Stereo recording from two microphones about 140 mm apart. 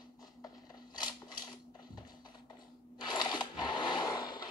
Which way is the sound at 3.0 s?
30° left (ahead or behind).